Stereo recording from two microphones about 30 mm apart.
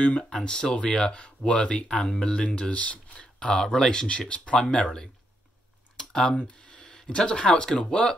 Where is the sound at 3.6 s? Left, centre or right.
Left.